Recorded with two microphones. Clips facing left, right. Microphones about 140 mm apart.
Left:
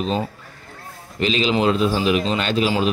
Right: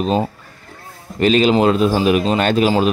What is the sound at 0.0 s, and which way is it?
Speech, 40° right (ahead or behind).